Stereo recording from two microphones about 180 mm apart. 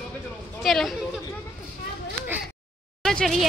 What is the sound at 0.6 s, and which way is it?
Chatter, centre (ahead or behind).